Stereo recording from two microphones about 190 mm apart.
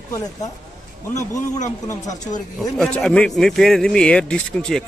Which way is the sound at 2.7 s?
5° left (ahead or behind).